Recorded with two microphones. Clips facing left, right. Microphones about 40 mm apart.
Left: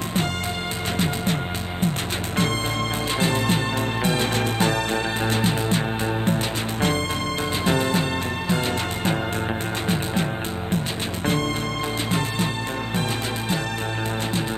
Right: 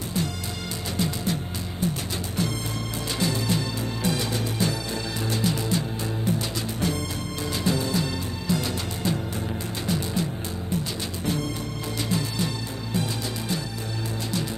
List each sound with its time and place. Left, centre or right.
0.9 s music: left